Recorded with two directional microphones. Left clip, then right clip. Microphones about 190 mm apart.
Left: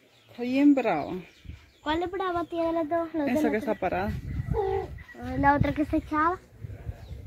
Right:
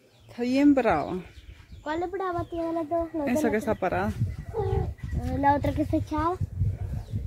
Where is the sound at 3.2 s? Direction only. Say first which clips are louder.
Right 2 dB; centre (ahead or behind).